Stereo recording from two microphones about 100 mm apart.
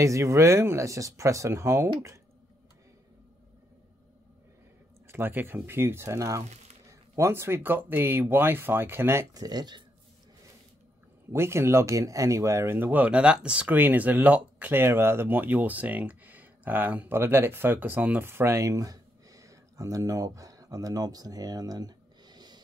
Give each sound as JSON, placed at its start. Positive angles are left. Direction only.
{"t": 0.0, "sound": "speech", "side_deg": -30}
{"t": 5.0, "sound": "speech", "side_deg": -25}
{"t": 9.3, "sound": "speech", "side_deg": -40}
{"t": 11.3, "sound": "speech", "side_deg": -25}